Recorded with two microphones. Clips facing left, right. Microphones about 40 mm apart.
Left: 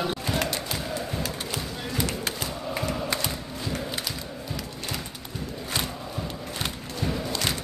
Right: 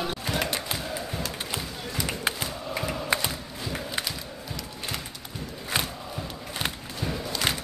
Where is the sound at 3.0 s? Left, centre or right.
Centre.